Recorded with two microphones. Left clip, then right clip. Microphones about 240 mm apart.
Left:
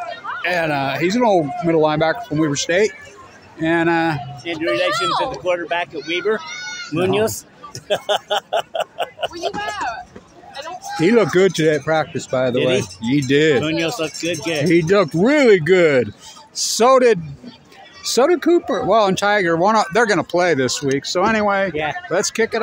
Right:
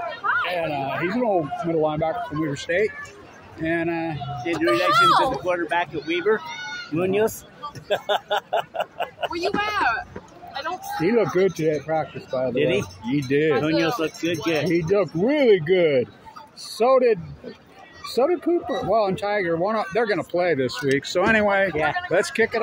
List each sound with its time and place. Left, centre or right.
0.4 s speech: left
4.9 s speech: centre
5.3 s speech: left
9.3 s speech: right
10.5 s a sound: right
10.9 s speech: left
21.2 s speech: left